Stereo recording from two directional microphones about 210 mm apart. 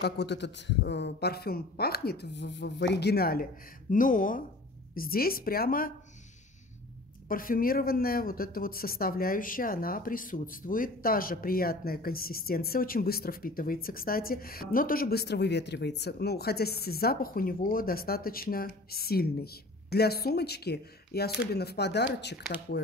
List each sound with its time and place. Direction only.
0.0 s speech: 55° left (ahead or behind)
7.2 s speech: 40° left (ahead or behind)